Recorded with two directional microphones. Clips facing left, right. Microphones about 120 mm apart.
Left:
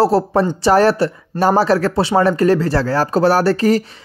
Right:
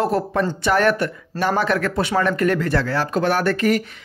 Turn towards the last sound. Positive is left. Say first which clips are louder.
# left 5 dB
turn(degrees=30)  # may be behind; listen again after turning